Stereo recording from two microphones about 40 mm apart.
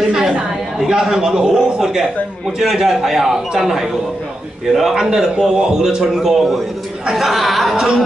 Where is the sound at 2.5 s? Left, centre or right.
Centre.